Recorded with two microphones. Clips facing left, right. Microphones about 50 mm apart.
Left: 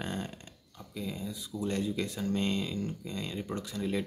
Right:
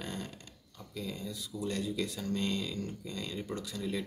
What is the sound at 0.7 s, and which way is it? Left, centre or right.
Speech, centre.